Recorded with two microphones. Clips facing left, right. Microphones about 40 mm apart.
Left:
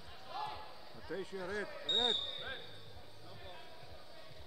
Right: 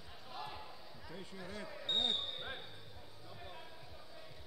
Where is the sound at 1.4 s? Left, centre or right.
Centre.